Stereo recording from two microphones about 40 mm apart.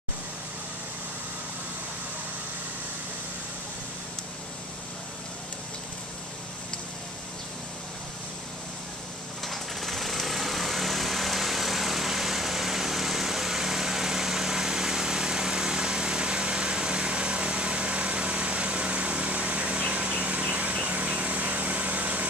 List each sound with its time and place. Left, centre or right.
9.4 s lawn mower: centre; by 22.3 s right